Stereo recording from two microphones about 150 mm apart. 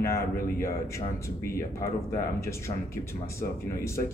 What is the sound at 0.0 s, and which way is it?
Speech, 20° left (ahead or behind).